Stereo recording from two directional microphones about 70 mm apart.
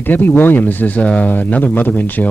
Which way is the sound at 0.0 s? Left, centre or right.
Left.